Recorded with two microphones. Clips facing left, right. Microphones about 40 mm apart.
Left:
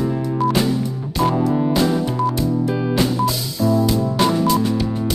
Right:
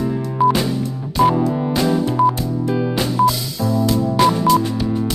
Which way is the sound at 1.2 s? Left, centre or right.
Centre.